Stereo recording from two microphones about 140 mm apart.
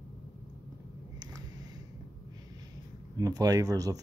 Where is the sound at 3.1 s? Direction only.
25° right (ahead or behind).